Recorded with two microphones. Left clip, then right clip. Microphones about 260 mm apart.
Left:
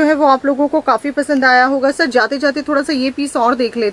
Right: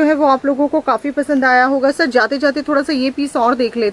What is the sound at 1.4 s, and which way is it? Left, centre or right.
Speech, centre.